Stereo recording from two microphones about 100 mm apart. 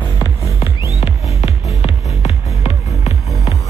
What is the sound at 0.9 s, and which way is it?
Music, 75° left (ahead or behind).